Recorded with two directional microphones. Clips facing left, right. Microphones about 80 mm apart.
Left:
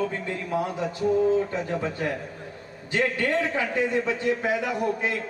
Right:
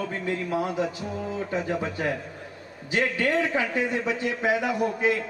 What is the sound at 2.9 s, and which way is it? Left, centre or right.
A man's voice, centre.